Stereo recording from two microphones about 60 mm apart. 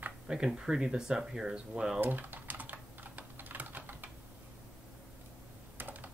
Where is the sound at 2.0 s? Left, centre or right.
Right.